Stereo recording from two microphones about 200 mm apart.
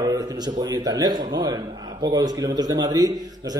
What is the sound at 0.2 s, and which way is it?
Speech, 20° right (ahead or behind).